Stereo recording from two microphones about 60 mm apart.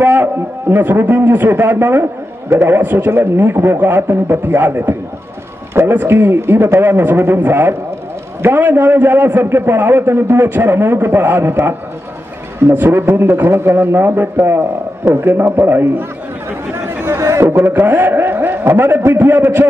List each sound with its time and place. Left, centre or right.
0.0 s a man's voice: right
17.0 s a sound: right
17.5 s a man's voice: right